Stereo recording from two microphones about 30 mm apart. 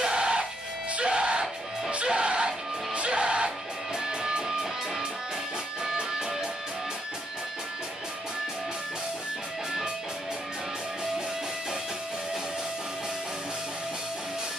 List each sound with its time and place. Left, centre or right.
0.0 s music: right